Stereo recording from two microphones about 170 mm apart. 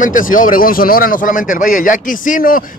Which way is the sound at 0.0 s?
50° left (ahead or behind).